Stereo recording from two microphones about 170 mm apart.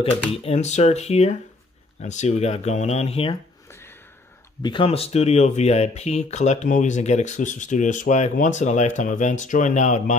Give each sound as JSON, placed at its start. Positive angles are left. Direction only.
{"t": 0.3, "sound": "speech", "side_deg": 35}
{"t": 4.6, "sound": "speech", "side_deg": 30}